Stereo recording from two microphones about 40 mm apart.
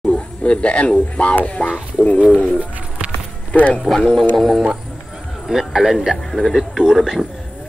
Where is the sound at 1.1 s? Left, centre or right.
Left.